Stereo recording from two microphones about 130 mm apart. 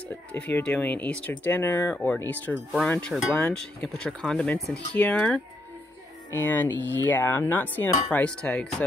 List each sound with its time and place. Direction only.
0.3 s speech: 15° left (ahead or behind)